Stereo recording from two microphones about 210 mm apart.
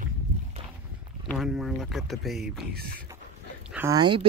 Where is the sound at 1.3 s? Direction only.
Centre (ahead or behind).